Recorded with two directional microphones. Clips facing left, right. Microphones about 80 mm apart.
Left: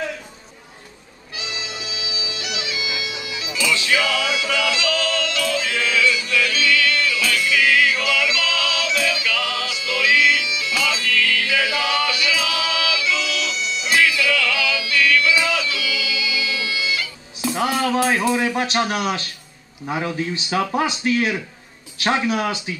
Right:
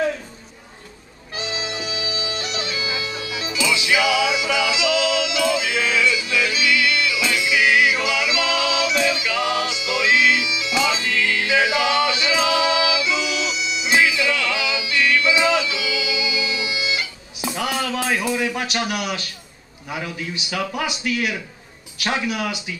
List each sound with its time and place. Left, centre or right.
1.3 s bagpipes: right
3.5 s music: centre
17.9 s a man's voice: left